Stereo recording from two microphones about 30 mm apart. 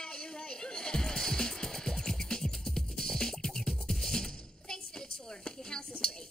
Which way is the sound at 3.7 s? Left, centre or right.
Centre.